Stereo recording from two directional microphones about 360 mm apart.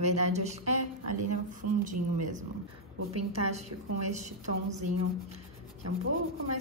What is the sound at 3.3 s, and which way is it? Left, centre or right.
A woman's voice, centre.